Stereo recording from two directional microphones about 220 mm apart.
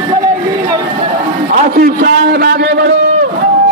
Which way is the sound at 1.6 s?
40° right (ahead or behind).